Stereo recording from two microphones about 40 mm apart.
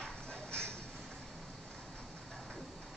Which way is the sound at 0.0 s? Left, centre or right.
Left.